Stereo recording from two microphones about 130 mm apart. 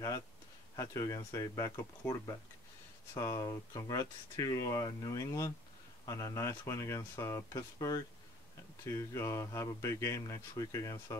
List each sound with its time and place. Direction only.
0.7 s speech: 25° left (ahead or behind)
3.2 s speech: 25° left (ahead or behind)